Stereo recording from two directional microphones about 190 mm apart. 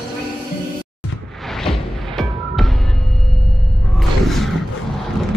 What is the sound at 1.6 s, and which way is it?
Music, centre (ahead or behind).